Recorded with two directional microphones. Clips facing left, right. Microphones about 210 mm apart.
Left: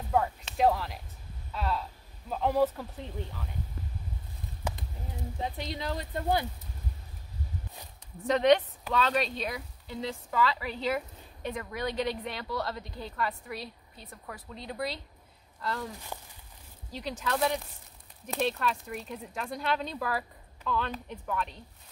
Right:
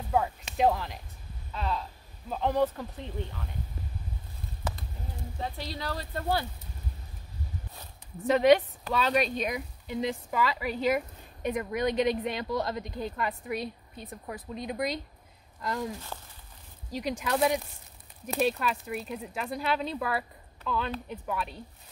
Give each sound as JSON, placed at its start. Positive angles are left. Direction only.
{"t": 0.1, "sound": "speech", "side_deg": -5}
{"t": 4.6, "sound": "a sound", "side_deg": 10}
{"t": 5.4, "sound": "speech", "side_deg": 20}
{"t": 8.2, "sound": "speech", "side_deg": -5}
{"t": 16.1, "sound": "a sound", "side_deg": 10}
{"t": 16.9, "sound": "speech", "side_deg": -15}